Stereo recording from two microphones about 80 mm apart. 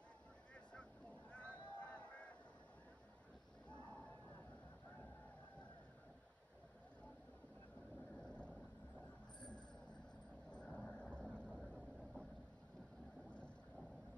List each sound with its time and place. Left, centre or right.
0.7 s honk: centre
1.7 s a sound: centre
8.2 s vehicle: centre
10.5 s vehicle: centre